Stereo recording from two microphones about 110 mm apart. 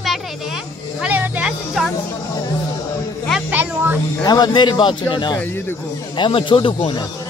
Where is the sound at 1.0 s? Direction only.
15° right (ahead or behind).